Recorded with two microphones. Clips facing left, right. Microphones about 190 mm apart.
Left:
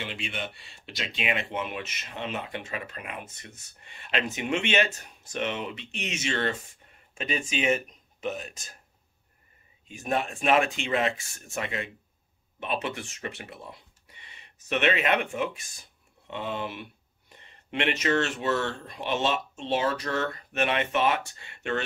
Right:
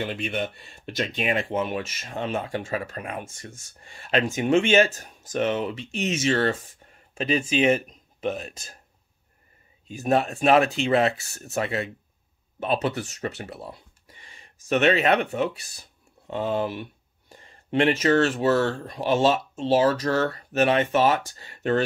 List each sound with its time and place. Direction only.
0.0 s speech: 45° right (ahead or behind)
9.8 s speech: 35° right (ahead or behind)